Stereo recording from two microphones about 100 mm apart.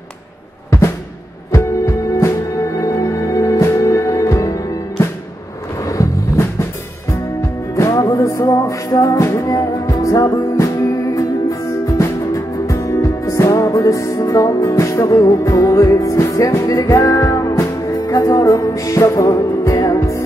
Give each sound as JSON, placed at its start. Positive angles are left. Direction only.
{"t": 0.7, "sound": "drum", "side_deg": 25}
{"t": 1.5, "sound": "music", "side_deg": 30}
{"t": 7.7, "sound": "music", "side_deg": 30}
{"t": 12.0, "sound": "music", "side_deg": 35}